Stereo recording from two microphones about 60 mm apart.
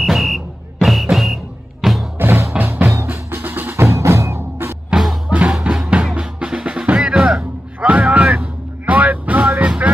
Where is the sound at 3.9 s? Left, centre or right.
Right.